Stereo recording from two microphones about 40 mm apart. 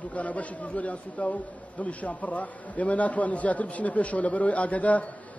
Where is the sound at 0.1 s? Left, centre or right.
Left.